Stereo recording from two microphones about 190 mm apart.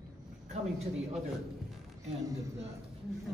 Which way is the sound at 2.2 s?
20° right (ahead or behind).